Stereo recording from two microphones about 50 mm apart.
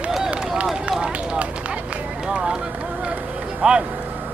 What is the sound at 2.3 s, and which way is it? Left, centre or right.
Run, centre.